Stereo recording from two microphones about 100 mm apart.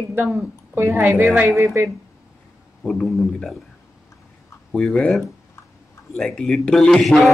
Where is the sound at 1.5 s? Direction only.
30° right (ahead or behind).